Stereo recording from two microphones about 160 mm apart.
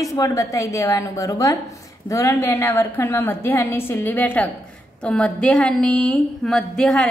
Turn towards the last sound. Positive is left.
turn(degrees=5)  # may be behind; listen again after turning